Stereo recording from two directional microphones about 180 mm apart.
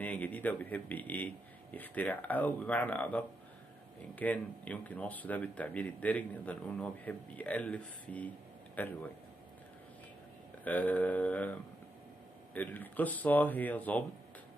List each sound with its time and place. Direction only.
0.0 s speech: 10° left (ahead or behind)
10.6 s speech: 10° left (ahead or behind)
12.5 s speech: 10° left (ahead or behind)